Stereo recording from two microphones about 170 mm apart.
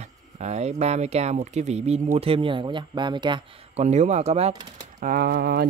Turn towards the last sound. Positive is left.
turn(degrees=-65)  # may be behind; listen again after turning